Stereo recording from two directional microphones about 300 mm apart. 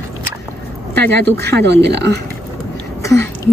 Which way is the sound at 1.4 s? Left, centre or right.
Right.